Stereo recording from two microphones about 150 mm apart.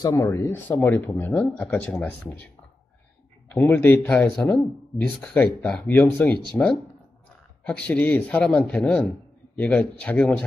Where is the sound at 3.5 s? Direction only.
10° left (ahead or behind).